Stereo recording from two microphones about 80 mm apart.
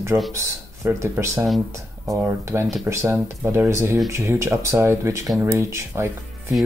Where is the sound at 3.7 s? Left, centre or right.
Right.